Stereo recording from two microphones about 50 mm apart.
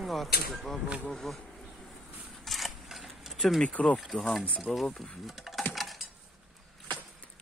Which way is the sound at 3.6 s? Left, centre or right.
Left.